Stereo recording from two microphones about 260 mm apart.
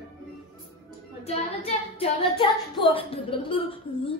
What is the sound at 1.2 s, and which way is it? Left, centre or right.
Child singing, left.